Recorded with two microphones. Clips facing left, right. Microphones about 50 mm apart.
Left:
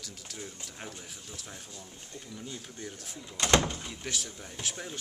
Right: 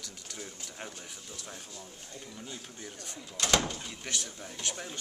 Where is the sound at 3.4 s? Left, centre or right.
Left.